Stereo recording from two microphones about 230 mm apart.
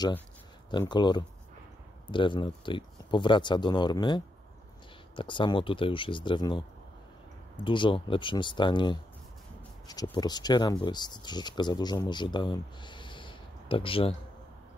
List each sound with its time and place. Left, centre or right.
0.7 s speech: centre